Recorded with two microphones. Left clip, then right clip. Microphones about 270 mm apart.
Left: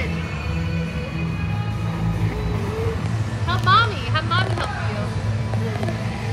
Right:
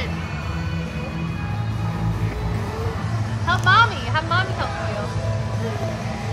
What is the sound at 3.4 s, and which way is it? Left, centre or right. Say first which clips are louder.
Vehicle: right 2 dB; right.